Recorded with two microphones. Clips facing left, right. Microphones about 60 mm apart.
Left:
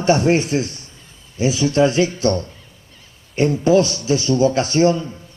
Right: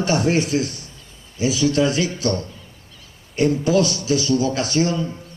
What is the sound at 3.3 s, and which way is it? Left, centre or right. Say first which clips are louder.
A man's voice: left 3 dB; left.